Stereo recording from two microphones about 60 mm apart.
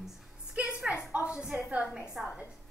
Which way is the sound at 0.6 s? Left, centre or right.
Right.